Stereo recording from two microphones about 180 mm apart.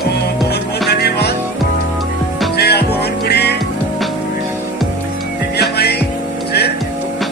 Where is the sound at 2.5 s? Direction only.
65° left (ahead or behind).